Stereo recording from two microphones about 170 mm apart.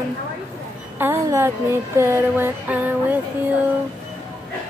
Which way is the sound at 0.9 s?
15° right (ahead or behind).